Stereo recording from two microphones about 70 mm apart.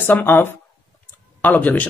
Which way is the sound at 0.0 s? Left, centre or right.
Left.